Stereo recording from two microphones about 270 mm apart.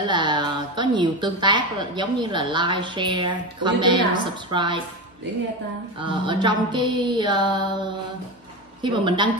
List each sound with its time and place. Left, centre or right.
0.0 s a woman's voice: centre
5.9 s a woman's voice: centre
8.8 s a woman's voice: centre